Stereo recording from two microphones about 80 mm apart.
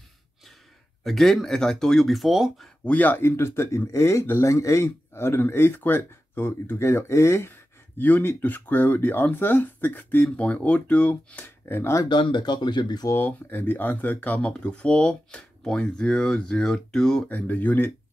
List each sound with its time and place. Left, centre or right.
1.0 s speech: centre
2.8 s speech: centre; by 12.1 s left
12.1 s speech: left
13.1 s speech: left; by 17.2 s centre
17.3 s speech: left